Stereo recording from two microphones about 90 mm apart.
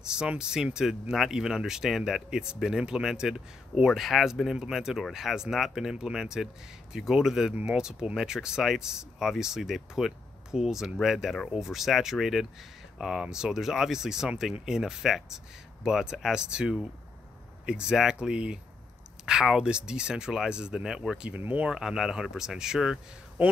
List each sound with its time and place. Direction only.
0.0 s speech: 10° right (ahead or behind)
21.4 s speech: 20° right (ahead or behind)
21.6 s speech: 5° right (ahead or behind)